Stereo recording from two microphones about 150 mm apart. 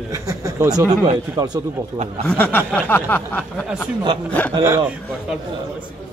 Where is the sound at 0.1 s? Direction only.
20° right (ahead or behind).